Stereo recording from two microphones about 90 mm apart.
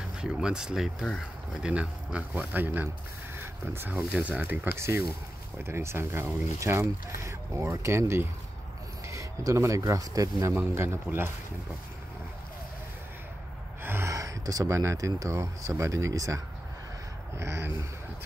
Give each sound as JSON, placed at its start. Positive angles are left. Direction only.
{"t": 0.2, "sound": "speech", "side_deg": -10}
{"t": 1.6, "sound": "speech", "side_deg": -15}
{"t": 4.7, "sound": "speech", "side_deg": -30}
{"t": 10.5, "sound": "speech", "side_deg": -25}
{"t": 13.8, "sound": "speech", "side_deg": -30}
{"t": 17.4, "sound": "speech", "side_deg": -30}